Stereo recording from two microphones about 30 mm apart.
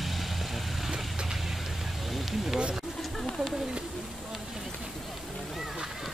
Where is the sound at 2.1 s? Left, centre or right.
Centre.